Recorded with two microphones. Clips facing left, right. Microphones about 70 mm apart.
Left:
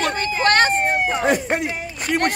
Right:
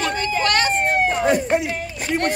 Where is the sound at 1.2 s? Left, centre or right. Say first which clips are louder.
Right 1 dB; left.